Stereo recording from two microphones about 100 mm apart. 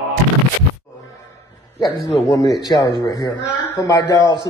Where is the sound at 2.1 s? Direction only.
35° left (ahead or behind).